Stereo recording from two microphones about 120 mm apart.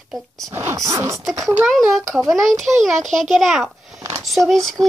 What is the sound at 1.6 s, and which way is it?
A child's voice, centre (ahead or behind).